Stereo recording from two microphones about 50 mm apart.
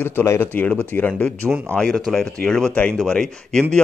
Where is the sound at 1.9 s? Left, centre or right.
Centre.